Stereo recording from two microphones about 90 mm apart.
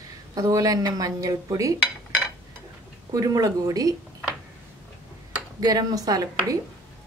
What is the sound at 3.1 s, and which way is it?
Speech, 40° right (ahead or behind).